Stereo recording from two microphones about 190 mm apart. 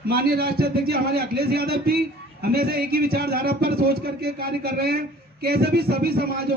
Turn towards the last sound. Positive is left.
turn(degrees=-55)  # may be behind; listen again after turning